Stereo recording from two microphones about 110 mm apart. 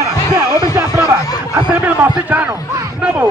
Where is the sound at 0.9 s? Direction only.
30° left (ahead or behind).